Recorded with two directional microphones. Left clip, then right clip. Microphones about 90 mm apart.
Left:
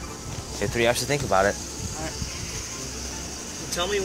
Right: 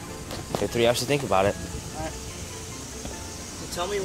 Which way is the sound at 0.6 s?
50° right (ahead or behind).